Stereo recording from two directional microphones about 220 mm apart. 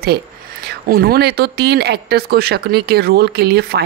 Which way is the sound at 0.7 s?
45° right (ahead or behind).